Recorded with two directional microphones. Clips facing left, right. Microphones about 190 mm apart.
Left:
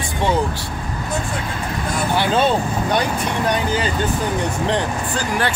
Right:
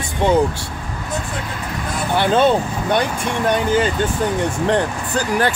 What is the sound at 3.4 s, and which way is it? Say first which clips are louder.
Speech: right 5 dB; 50° right (ahead or behind).